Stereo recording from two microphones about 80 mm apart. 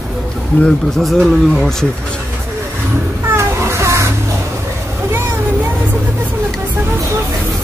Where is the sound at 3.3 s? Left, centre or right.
Right.